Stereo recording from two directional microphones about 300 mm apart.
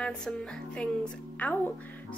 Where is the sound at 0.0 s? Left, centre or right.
Centre.